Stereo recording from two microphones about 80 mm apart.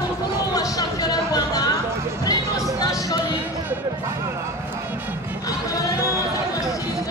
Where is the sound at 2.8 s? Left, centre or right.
Left.